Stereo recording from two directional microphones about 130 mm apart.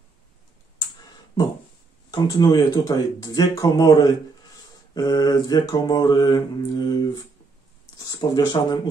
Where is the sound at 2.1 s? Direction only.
35° left (ahead or behind).